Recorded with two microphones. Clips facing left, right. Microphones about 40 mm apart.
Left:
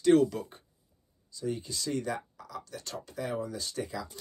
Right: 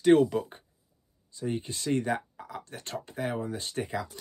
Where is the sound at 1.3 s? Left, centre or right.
Right.